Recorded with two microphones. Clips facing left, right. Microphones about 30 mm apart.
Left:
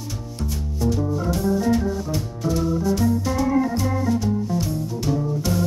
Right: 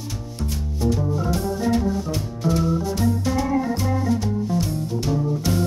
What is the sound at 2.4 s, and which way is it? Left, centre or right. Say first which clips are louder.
Music: even; centre.